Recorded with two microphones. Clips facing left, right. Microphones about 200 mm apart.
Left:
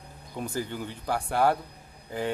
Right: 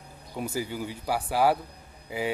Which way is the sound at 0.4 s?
10° right (ahead or behind).